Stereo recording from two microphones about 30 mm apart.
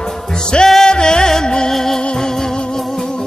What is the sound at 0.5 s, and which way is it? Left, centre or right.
Music, left.